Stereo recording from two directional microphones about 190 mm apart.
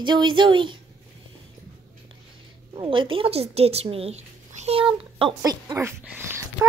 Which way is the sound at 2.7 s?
25° right (ahead or behind).